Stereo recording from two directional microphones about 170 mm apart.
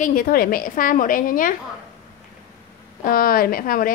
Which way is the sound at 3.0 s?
55° left (ahead or behind).